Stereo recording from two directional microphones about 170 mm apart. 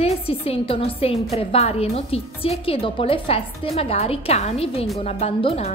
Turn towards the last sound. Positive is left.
turn(degrees=35)  # may be behind; listen again after turning